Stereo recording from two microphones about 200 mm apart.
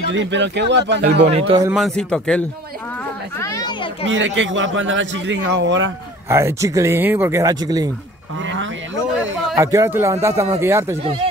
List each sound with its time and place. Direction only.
0.1 s speech: 65° right (ahead or behind)
1.2 s a man's voice: 30° right (ahead or behind)
2.0 s speech: 5° left (ahead or behind)
3.3 s children playing: 15° left (ahead or behind)
4.0 s a man's voice: 70° right (ahead or behind)
6.2 s speech: 15° right (ahead or behind)
8.5 s a sound: 70° right (ahead or behind)
9.6 s speech: 15° right (ahead or behind)